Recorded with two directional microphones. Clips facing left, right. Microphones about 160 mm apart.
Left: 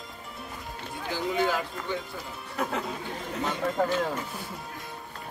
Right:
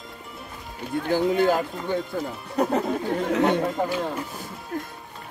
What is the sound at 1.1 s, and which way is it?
Speech, 50° right (ahead or behind).